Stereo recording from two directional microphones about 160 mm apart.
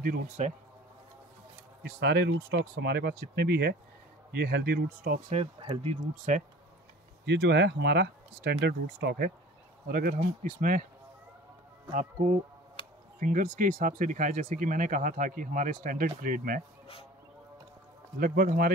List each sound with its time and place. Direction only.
0.0 s speech: 60° right (ahead or behind)
1.8 s speech: 90° right; by 5.2 s 70° right (ahead or behind)
5.3 s speech: 35° right (ahead or behind)
6.3 s speech: 50° right (ahead or behind)
7.2 s speech: 90° right
9.8 s speech: 70° right (ahead or behind)
11.9 s speech: 50° right (ahead or behind)
12.8 s a sound: 35° left (ahead or behind)
13.2 s speech: 55° right (ahead or behind)
18.2 s speech: 65° right (ahead or behind)